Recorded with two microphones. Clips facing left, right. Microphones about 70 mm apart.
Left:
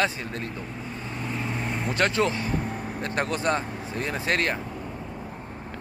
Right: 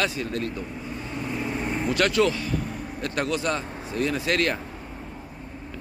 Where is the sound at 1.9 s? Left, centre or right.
Left.